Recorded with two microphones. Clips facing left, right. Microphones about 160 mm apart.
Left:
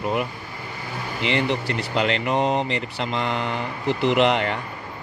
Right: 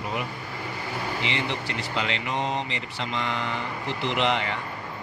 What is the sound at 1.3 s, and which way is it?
Speech, 50° left (ahead or behind).